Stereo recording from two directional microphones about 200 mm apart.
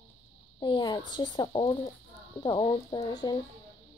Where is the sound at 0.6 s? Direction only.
20° left (ahead or behind).